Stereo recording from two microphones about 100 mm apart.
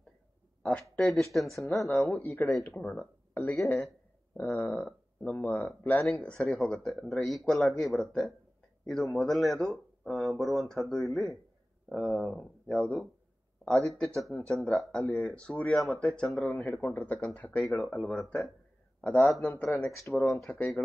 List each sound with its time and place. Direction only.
0.6 s a sound: 10° left (ahead or behind)
0.9 s speech: 5° left (ahead or behind)
2.0 s speech: 15° left (ahead or behind)
17.7 s speech: 5° left (ahead or behind)
19.0 s speech: 15° left (ahead or behind)